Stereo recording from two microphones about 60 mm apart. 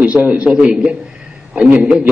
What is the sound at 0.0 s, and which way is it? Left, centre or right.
A man's voice, right.